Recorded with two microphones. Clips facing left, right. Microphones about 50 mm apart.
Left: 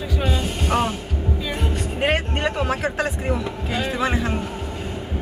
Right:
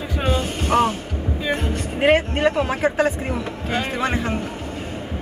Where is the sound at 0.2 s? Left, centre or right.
Right.